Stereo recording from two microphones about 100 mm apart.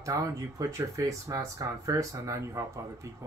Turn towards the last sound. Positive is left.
turn(degrees=-30)  # may be behind; listen again after turning